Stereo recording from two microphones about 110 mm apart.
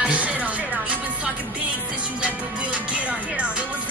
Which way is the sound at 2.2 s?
10° right (ahead or behind).